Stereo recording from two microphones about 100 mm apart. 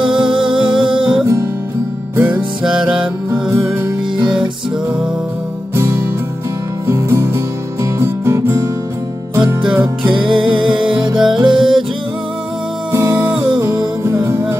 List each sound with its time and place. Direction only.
0.6 s music: 5° right (ahead or behind)
1.2 s music: 30° right (ahead or behind)
2.1 s music: 15° right (ahead or behind)
6.9 s music: 25° right (ahead or behind)
10.0 s music: 55° right (ahead or behind)
14.0 s music: 25° right (ahead or behind)